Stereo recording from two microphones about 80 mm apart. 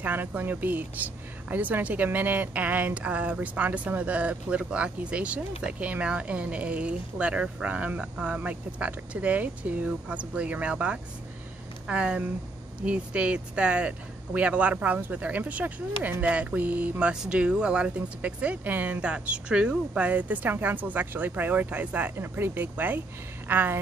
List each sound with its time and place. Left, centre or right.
0.0 s speech: right